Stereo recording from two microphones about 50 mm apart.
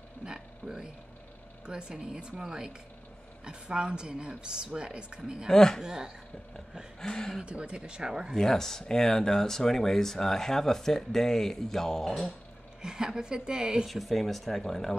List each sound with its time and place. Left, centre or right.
0.2 s a sound: centre
1.7 s speech: centre
5.5 s speech: centre
5.8 s speech: centre
7.0 s speech: centre
7.4 s speech: right
8.4 s speech: centre
12.8 s speech: centre
13.8 s speech: centre